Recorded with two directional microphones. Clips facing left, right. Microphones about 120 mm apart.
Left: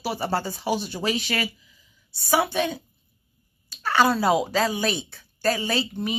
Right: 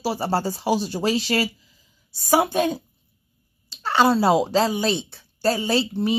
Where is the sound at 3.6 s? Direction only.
25° right (ahead or behind).